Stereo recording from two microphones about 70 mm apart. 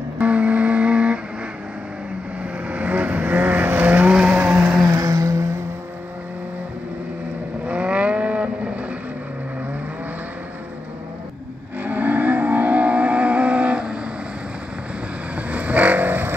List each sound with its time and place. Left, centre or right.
0.2 s vehicle: centre
2.7 s vehicle: right
4.8 s a sound: right
7.6 s vehicle: centre
11.8 s a sound: right
15.3 s vehicle: right